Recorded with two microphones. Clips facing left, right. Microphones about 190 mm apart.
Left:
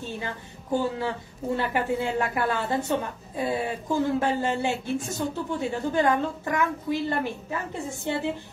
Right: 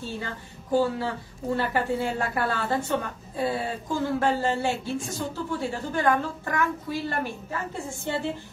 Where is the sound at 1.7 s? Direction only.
15° left (ahead or behind).